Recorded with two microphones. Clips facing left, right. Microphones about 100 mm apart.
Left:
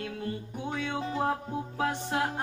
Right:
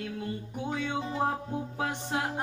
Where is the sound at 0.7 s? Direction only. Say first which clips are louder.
Even; 10° right (ahead or behind).